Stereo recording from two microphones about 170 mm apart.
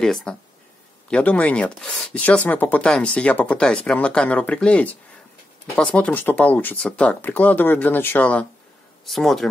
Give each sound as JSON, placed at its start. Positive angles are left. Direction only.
{"t": 0.0, "sound": "speech", "side_deg": 5}